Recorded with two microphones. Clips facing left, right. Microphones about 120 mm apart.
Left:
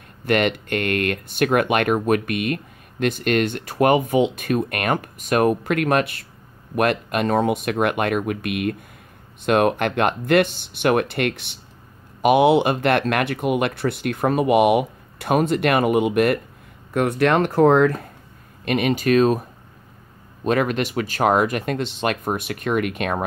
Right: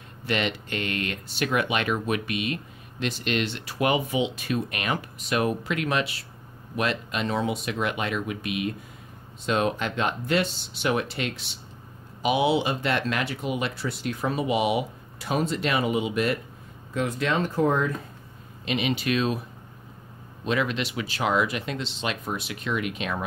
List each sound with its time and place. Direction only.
0.2 s speech: 55° left (ahead or behind); by 18.0 s 75° left (ahead or behind)
18.7 s speech: 50° left (ahead or behind)
20.4 s speech: 50° left (ahead or behind)